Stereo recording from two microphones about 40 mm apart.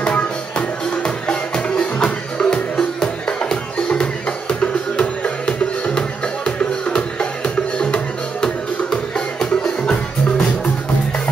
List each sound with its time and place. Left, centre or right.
0.0 s music: left